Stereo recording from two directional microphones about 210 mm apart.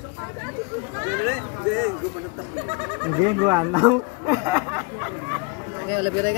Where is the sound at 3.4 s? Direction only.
25° right (ahead or behind).